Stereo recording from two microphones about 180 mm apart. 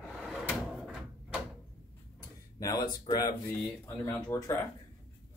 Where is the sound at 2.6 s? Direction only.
20° left (ahead or behind).